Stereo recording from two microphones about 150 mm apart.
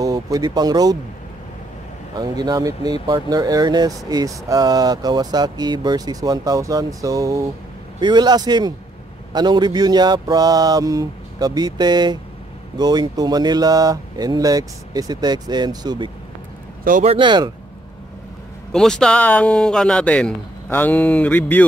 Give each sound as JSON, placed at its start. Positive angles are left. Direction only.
{"t": 0.0, "sound": "speech", "side_deg": -25}
{"t": 2.1, "sound": "speech", "side_deg": -25}
{"t": 18.7, "sound": "speech", "side_deg": 5}